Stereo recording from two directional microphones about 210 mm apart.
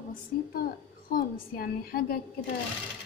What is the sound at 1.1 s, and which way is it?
A woman's voice, 45° left (ahead or behind).